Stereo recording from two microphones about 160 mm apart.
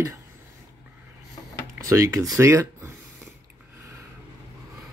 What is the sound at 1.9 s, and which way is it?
Speech, 20° right (ahead or behind).